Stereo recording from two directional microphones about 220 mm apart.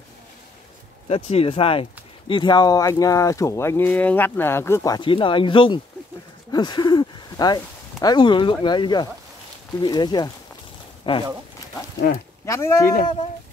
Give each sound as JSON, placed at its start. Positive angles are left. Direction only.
{"t": 1.0, "sound": "speech", "side_deg": 25}
{"t": 12.4, "sound": "speech", "side_deg": 15}